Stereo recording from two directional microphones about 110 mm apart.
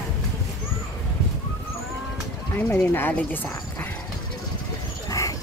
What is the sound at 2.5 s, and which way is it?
Speech, 20° left (ahead or behind).